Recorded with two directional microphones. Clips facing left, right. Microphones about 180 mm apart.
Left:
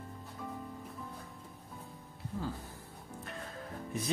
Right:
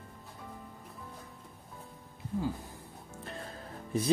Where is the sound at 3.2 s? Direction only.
30° right (ahead or behind).